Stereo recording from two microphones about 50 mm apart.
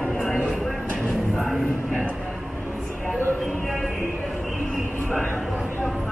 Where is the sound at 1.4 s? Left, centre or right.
Centre.